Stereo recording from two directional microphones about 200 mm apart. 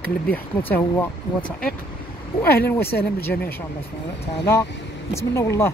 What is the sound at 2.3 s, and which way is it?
Speech, 45° left (ahead or behind).